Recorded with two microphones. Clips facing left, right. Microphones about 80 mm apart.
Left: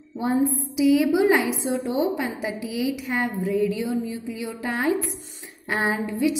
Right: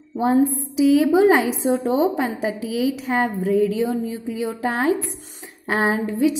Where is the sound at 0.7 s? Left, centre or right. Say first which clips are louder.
Right 4 dB; right.